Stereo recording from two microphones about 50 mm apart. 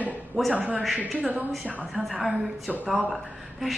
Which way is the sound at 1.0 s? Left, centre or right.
Centre.